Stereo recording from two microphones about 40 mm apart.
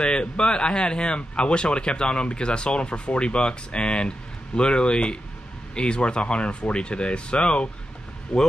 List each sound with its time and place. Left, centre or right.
0.0 s speech: left